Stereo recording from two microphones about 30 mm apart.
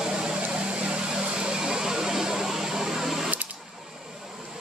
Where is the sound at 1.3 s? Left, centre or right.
Right; by 3.3 s centre.